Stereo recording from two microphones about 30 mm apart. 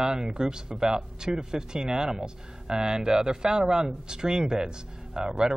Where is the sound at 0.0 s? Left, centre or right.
Right.